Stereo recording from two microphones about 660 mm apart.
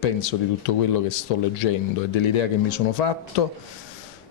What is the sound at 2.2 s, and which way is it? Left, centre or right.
Speech, left.